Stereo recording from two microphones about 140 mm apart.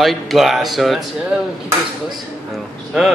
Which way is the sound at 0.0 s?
Centre (ahead or behind).